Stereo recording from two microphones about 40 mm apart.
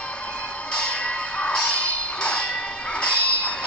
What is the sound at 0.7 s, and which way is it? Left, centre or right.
Music, left.